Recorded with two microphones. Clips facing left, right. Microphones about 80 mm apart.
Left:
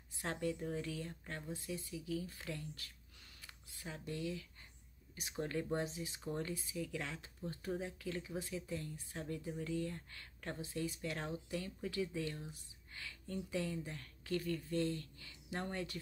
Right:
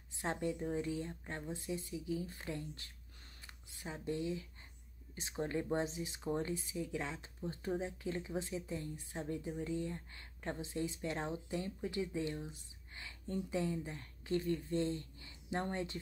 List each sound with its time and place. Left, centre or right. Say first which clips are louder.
0.2 s speech: right 2 dB; right